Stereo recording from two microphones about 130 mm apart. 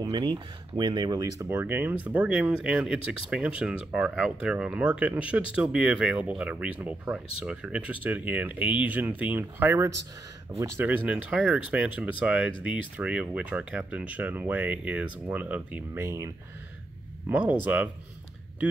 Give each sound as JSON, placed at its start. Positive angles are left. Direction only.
{"t": 0.0, "sound": "speech", "side_deg": -35}
{"t": 1.5, "sound": "speech", "side_deg": -15}
{"t": 17.3, "sound": "speech", "side_deg": -10}